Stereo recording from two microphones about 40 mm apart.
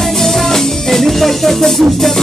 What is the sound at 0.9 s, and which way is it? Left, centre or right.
Music, centre.